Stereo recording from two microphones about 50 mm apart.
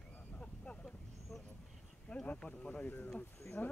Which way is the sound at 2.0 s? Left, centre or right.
Left.